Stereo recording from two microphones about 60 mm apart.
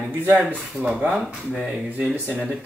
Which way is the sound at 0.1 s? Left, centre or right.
Right.